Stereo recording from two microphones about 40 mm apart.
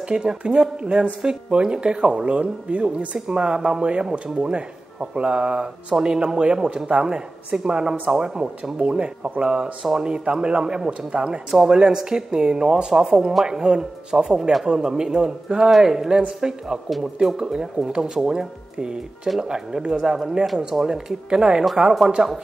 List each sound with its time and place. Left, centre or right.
0.1 s speech: right
3.3 s speech: right
8.7 s speech: right